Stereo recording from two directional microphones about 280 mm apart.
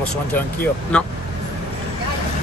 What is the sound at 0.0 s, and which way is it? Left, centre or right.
Speech, centre.